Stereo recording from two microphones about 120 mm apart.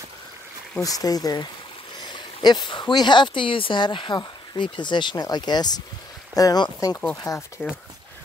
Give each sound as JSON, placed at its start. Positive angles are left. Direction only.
{"t": 0.7, "sound": "speech", "side_deg": 30}
{"t": 7.2, "sound": "speech", "side_deg": 25}